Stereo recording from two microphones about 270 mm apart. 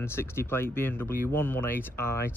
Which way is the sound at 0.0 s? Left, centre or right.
Centre.